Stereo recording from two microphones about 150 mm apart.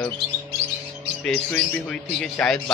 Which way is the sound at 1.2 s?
5° left (ahead or behind).